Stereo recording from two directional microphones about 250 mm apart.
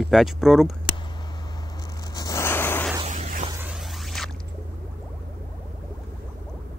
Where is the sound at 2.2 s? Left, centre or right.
Centre.